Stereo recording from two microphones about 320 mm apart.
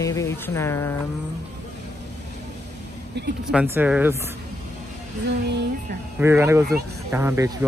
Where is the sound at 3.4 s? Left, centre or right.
Centre.